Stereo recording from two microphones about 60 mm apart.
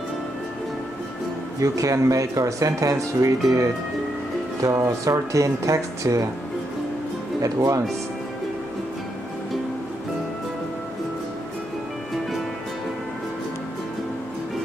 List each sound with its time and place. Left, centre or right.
1.6 s speech: right
4.8 s speech: right
7.4 s speech: right